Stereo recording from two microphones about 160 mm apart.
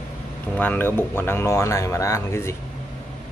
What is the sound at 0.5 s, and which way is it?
Speech, 10° left (ahead or behind).